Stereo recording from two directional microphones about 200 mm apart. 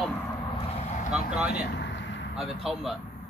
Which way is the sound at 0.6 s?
35° left (ahead or behind).